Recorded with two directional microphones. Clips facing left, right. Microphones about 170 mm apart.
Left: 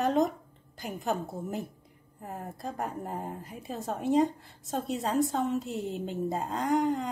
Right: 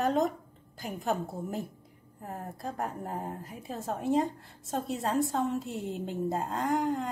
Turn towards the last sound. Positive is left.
turn(degrees=0)  # may be behind; listen again after turning